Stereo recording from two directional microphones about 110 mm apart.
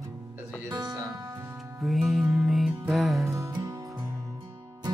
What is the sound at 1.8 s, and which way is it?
Music, centre (ahead or behind).